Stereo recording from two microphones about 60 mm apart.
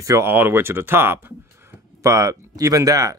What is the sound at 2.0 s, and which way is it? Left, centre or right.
Speech, right.